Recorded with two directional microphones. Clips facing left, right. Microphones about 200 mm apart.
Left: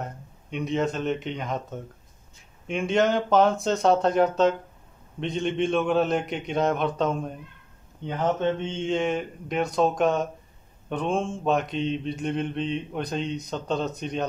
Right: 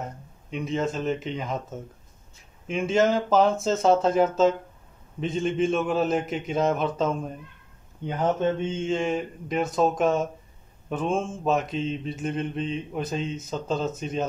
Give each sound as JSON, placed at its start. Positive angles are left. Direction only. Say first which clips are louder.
{"t": 0.0, "sound": "mantra", "louder": "even", "side_deg": 0}